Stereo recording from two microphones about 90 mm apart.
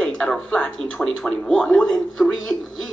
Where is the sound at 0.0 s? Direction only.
10° left (ahead or behind).